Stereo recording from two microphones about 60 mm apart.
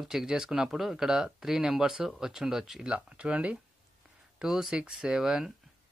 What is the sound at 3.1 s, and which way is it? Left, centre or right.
Speech, right.